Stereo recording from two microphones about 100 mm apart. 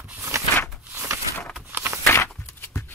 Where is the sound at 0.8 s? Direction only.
25° right (ahead or behind).